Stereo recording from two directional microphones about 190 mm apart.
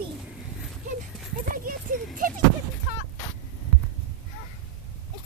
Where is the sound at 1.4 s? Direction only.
50° right (ahead or behind).